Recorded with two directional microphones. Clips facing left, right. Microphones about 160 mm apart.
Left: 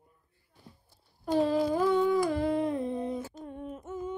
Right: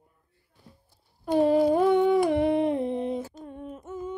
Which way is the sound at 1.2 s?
60° right (ahead or behind).